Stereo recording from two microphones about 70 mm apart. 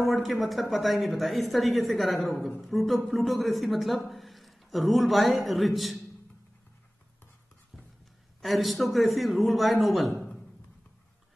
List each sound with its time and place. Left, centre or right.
0.0 s a man's voice: centre
8.4 s a man's voice: centre